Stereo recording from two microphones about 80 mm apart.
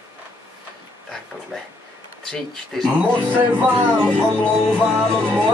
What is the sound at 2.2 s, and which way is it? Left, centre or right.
Speech, centre.